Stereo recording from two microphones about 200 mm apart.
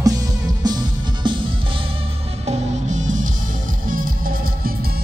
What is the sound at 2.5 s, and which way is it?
Music, 35° right (ahead or behind).